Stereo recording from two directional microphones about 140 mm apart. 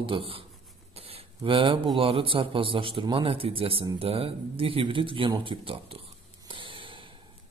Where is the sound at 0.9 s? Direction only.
45° right (ahead or behind).